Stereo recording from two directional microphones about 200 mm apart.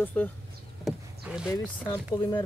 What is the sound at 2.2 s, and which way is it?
Speech, 20° left (ahead or behind).